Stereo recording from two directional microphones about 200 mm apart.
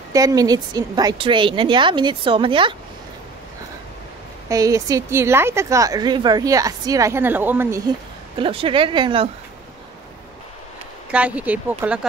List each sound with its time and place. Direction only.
0.1 s a woman's voice: 15° right (ahead or behind)
4.5 s a woman's voice: 15° right (ahead or behind)
8.4 s a woman's voice: 25° right (ahead or behind)
11.1 s a woman's voice: 5° right (ahead or behind)